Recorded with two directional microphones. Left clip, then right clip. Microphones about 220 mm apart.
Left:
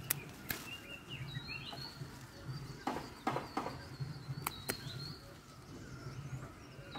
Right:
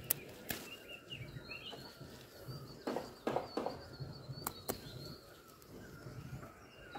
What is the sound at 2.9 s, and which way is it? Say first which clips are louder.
Horse: even; 30° left (ahead or behind).